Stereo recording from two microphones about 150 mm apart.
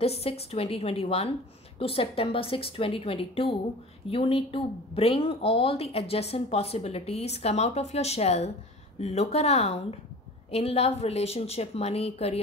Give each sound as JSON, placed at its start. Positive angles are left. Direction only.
{"t": 0.0, "sound": "a woman's voice", "side_deg": 40}